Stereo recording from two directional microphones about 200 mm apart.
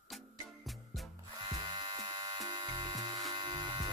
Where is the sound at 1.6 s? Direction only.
20° right (ahead or behind).